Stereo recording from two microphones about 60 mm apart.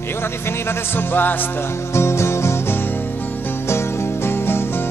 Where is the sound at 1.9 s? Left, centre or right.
Left.